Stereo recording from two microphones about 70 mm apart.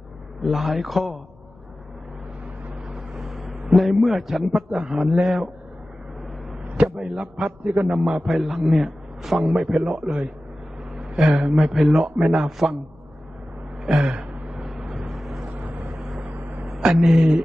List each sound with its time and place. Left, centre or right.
0.4 s a man's voice: centre
2.9 s a sound: centre
4.6 s a man's voice: centre
6.9 s a man's voice: centre
13.8 s gasp: centre
14.5 s vehicle: centre
15.5 s vehicle: right
15.9 s vehicle: centre
16.2 s a sound: right
16.8 s a man's voice: centre